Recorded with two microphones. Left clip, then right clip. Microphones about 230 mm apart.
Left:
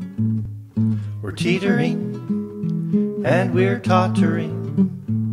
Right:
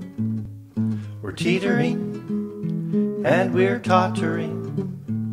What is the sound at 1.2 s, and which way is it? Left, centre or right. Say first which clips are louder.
Speech: left 1 dB; centre.